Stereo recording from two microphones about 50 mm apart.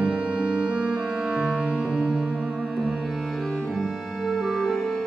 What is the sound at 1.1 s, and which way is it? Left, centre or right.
Music, centre.